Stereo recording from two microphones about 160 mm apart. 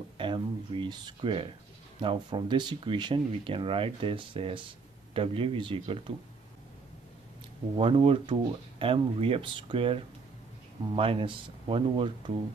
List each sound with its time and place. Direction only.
0.2 s speech: 30° right (ahead or behind)
7.7 s speech: 35° right (ahead or behind)